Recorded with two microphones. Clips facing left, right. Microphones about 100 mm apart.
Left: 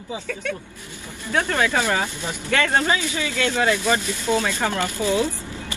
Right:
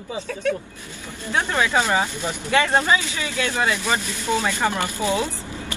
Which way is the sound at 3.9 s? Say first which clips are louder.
Left 2 dB; 15° right (ahead or behind).